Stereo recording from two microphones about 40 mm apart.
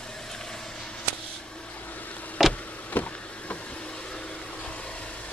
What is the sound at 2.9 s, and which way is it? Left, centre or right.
Vehicle, left.